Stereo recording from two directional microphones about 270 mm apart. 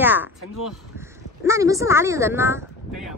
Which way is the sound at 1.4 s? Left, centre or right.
Centre.